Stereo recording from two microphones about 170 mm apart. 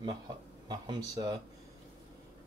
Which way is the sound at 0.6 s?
25° right (ahead or behind).